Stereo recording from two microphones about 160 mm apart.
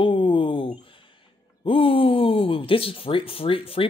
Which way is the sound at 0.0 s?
35° left (ahead or behind).